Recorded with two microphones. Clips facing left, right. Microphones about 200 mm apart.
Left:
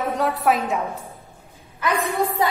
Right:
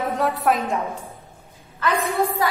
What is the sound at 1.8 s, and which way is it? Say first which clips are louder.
Speech: right 1 dB; 15° left (ahead or behind).